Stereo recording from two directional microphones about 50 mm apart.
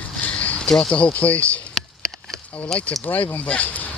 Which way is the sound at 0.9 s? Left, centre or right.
Left.